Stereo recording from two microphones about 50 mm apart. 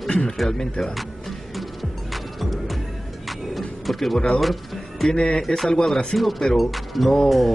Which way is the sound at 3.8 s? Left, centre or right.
Centre.